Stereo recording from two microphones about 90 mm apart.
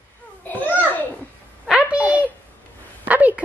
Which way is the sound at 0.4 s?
20° left (ahead or behind).